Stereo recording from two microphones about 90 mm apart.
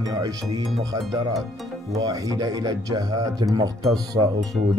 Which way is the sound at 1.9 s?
40° right (ahead or behind).